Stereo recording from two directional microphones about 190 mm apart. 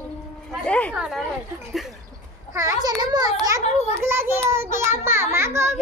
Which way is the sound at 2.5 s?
15° right (ahead or behind).